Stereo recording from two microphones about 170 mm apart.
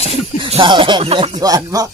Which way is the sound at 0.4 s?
30° right (ahead or behind).